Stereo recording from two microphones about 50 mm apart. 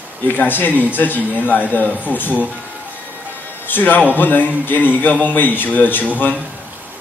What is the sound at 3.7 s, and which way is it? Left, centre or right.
Speech, left.